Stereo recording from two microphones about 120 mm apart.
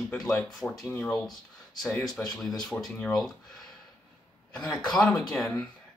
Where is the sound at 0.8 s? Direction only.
15° left (ahead or behind).